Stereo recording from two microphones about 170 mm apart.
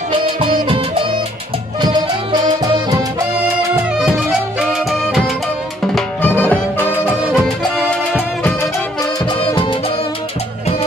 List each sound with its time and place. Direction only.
1.8 s music: 25° right (ahead or behind)
4.0 s music: 5° right (ahead or behind)
5.9 s music: 10° left (ahead or behind)